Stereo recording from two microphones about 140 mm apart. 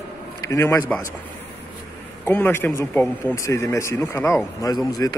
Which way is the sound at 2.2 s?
10° left (ahead or behind).